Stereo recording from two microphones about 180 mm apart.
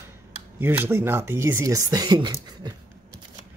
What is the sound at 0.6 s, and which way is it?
Speech, 10° right (ahead or behind).